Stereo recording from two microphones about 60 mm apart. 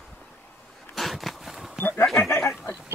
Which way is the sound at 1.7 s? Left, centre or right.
Left.